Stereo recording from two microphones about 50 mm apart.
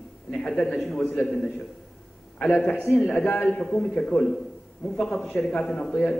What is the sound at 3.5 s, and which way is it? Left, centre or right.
A man's voice, centre.